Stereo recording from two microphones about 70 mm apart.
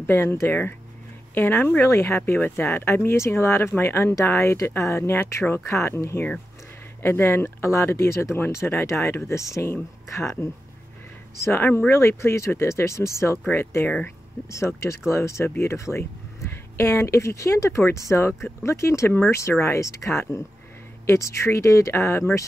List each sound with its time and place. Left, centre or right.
0.0 s speech: left
11.3 s speech: left
13.8 s speech: left
14.5 s speech: left